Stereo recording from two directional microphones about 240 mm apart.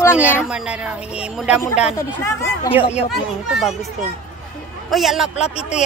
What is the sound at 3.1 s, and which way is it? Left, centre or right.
Speech, centre.